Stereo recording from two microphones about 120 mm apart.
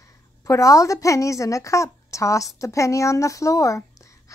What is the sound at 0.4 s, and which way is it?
A woman's voice, 30° left (ahead or behind).